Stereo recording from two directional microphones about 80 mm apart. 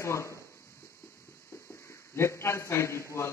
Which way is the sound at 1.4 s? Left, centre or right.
Left.